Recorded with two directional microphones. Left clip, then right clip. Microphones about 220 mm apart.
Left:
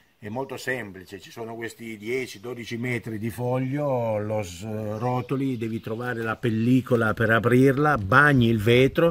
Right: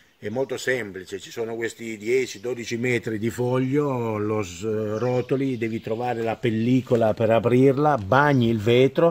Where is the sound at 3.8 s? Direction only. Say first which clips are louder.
Even; 15° left (ahead or behind).